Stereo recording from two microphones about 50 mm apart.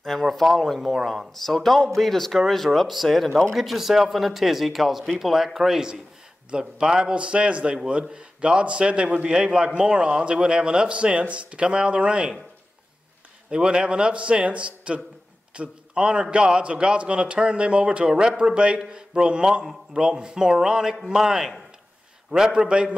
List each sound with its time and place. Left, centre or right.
0.0 s a man's voice: centre; by 12.4 s right
13.5 s a man's voice: centre